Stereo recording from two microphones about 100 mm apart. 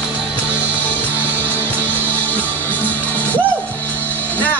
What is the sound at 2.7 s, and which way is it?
Music, 15° left (ahead or behind).